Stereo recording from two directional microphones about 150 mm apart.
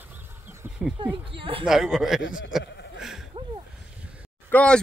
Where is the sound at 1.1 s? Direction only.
35° right (ahead or behind).